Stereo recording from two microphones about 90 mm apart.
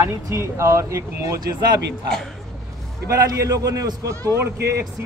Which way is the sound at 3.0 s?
35° right (ahead or behind).